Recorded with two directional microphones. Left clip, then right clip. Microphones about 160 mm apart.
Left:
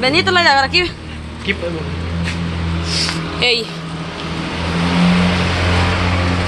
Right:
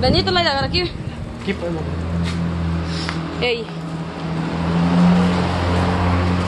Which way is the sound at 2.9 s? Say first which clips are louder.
Left 9 dB; 15° left (ahead or behind).